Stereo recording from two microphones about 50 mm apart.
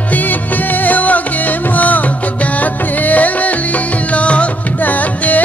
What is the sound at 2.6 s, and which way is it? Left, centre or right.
Music, left.